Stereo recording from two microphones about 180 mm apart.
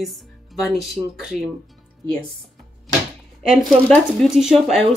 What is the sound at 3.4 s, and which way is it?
Speech, centre (ahead or behind).